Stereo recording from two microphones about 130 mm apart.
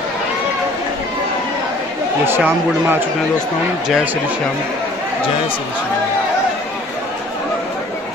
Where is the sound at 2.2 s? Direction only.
15° right (ahead or behind).